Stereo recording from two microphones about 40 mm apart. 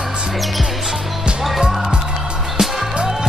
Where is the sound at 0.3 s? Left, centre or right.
Centre.